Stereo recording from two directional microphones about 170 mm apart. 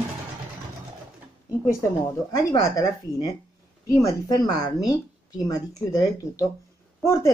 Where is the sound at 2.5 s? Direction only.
25° left (ahead or behind).